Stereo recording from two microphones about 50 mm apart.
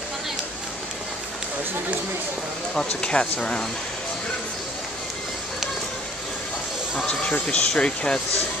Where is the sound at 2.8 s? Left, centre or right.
Centre.